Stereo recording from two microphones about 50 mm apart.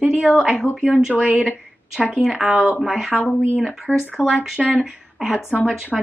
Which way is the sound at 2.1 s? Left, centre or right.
Centre.